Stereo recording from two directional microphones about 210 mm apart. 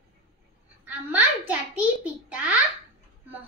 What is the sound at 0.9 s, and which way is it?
A child's voice, 5° right (ahead or behind).